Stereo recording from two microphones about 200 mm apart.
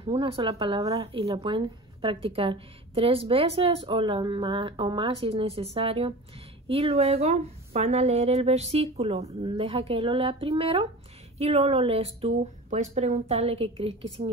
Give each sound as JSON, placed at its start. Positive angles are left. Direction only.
{"t": 0.0, "sound": "speech", "side_deg": -30}
{"t": 1.0, "sound": "speech", "side_deg": -30}